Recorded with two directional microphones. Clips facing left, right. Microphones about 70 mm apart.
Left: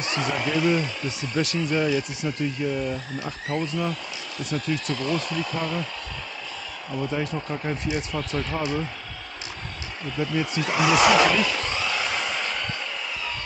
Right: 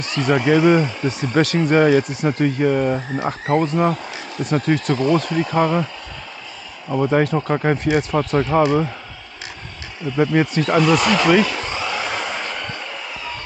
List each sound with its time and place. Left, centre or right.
0.0 s a sound: centre
0.6 s speech: right
4.9 s speech: right
5.2 s speech: right
6.9 s speech: right
10.1 s speech: right
10.6 s speech: centre
11.5 s a sound: centre